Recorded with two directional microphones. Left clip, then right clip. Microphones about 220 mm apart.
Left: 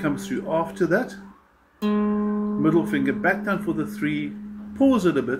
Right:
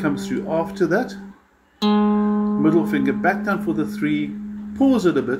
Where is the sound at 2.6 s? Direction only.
10° right (ahead or behind).